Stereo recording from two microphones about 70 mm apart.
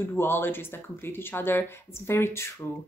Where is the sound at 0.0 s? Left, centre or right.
Left.